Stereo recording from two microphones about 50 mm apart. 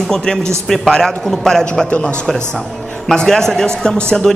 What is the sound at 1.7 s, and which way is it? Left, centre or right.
Speech, left.